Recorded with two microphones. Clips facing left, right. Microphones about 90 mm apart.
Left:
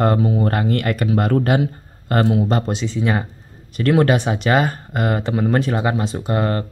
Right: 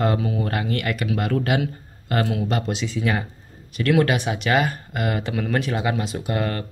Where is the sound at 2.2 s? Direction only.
25° left (ahead or behind).